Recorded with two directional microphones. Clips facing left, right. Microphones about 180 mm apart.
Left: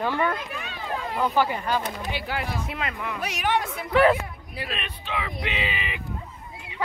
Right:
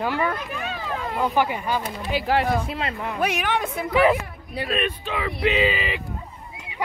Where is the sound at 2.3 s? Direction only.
40° right (ahead or behind).